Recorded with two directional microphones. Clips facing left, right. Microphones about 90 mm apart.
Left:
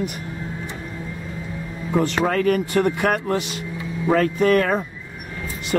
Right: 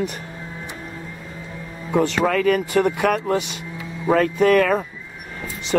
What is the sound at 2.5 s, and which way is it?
Speech, 45° right (ahead or behind).